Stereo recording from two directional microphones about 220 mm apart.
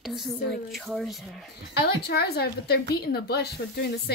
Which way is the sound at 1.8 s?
45° left (ahead or behind).